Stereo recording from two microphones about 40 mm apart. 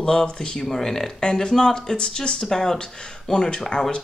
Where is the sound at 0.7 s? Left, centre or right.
Centre.